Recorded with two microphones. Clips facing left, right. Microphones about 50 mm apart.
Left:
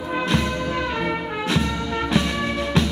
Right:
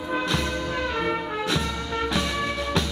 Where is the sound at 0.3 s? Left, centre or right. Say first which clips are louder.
Left 4 dB; centre.